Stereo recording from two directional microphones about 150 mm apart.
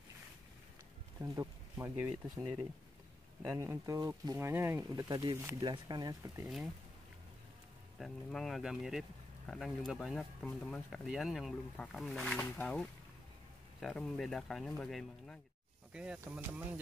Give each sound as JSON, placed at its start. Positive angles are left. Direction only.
{"t": 1.2, "sound": "speech", "side_deg": -20}
{"t": 3.4, "sound": "speech", "side_deg": -20}
{"t": 5.0, "sound": "speech", "side_deg": -25}
{"t": 6.4, "sound": "speech", "side_deg": -5}
{"t": 8.0, "sound": "speech", "side_deg": 0}